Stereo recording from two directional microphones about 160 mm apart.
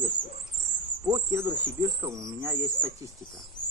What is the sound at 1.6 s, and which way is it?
Speech, 15° right (ahead or behind).